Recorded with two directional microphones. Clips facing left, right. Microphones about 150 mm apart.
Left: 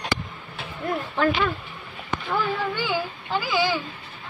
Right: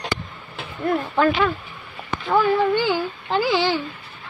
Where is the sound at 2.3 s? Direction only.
70° right (ahead or behind).